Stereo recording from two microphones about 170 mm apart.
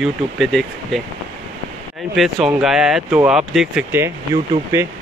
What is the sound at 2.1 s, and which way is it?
Speech, centre (ahead or behind).